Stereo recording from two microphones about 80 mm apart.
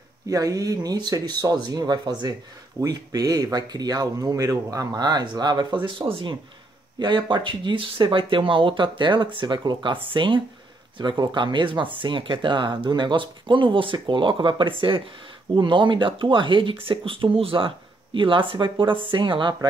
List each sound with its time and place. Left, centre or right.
0.3 s speech: right
5.9 s speech: right
7.0 s speech: right
11.0 s speech: right